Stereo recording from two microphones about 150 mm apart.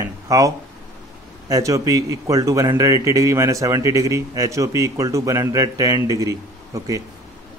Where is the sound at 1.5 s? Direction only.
20° right (ahead or behind).